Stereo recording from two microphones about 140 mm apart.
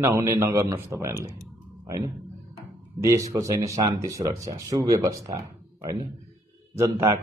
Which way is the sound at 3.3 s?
25° right (ahead or behind).